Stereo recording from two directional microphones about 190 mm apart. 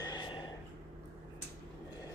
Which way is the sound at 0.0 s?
20° left (ahead or behind).